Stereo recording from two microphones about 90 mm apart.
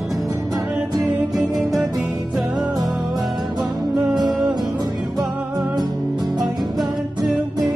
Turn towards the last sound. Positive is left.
turn(degrees=0)  # may be behind; listen again after turning